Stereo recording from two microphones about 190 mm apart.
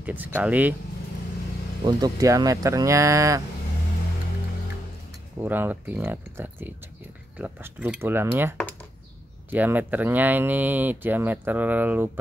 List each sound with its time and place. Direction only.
0.0 s speech: 10° right (ahead or behind)
1.9 s speech: 20° right (ahead or behind)
5.4 s speech: 10° right (ahead or behind)